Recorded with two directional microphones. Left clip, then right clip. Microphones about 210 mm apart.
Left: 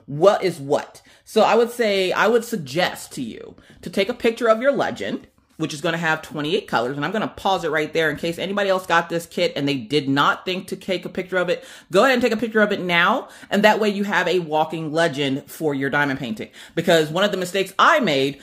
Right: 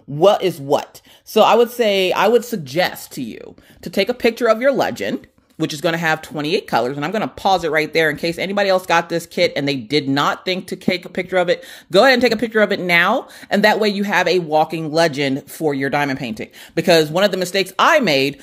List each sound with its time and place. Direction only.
0.2 s speech: 35° right (ahead or behind)